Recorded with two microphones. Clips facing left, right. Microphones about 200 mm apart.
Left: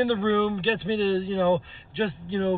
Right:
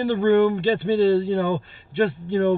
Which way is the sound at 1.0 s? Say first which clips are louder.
Right 3 dB; 50° right (ahead or behind).